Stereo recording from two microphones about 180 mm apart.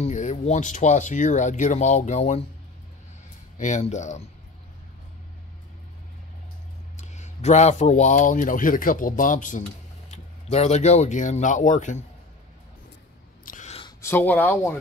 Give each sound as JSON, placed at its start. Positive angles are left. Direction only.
{"t": 0.0, "sound": "speech", "side_deg": 45}
{"t": 3.5, "sound": "speech", "side_deg": 40}
{"t": 7.0, "sound": "speech", "side_deg": 40}
{"t": 13.5, "sound": "a sound", "side_deg": 45}
{"t": 14.0, "sound": "speech", "side_deg": 10}